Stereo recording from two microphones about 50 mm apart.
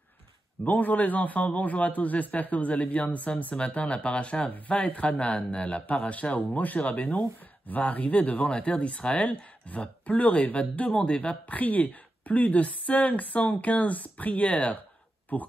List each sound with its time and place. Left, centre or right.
0.7 s a man's voice: left